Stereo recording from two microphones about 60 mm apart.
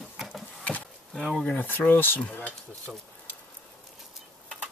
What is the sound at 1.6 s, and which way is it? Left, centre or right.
Speech, left.